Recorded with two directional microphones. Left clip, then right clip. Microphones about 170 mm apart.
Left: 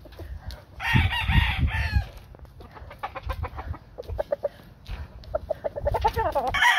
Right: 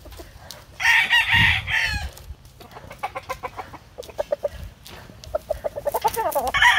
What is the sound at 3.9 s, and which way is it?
Chicken, 5° right (ahead or behind).